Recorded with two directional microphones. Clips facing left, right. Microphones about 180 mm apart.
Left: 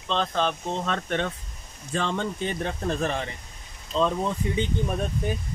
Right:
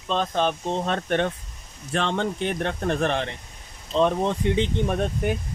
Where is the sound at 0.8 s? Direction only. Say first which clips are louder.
Right 4 dB; 45° right (ahead or behind).